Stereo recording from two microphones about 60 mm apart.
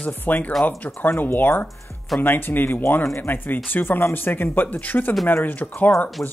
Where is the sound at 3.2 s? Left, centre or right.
Left.